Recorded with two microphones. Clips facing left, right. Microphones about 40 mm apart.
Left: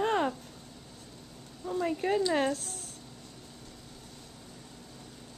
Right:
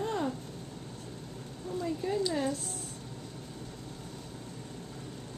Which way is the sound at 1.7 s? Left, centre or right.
Left.